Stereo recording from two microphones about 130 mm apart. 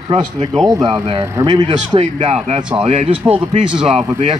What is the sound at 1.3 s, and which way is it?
Speech, 30° right (ahead or behind).